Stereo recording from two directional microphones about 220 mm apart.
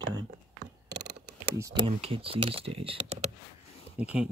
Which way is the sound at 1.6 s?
20° right (ahead or behind).